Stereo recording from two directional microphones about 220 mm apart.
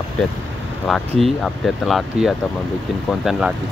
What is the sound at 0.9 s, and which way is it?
Speech, centre (ahead or behind).